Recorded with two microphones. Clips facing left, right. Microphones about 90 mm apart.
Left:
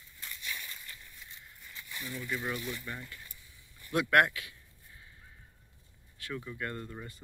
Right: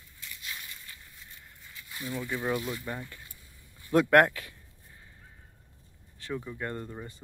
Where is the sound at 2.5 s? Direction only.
40° right (ahead or behind).